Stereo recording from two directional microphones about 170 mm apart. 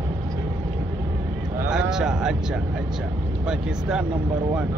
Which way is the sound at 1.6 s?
5° right (ahead or behind).